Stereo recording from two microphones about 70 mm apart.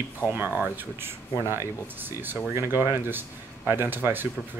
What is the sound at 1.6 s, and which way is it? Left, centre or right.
Speech, right.